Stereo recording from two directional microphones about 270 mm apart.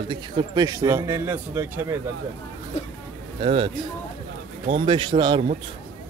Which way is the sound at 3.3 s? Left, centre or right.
Centre.